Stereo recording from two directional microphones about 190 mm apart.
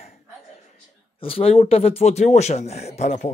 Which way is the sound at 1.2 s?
30° left (ahead or behind).